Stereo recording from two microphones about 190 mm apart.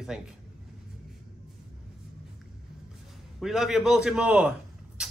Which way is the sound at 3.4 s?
Centre (ahead or behind).